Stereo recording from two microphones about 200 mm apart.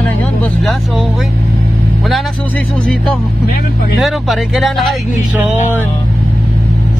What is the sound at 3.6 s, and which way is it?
Speech, 50° left (ahead or behind).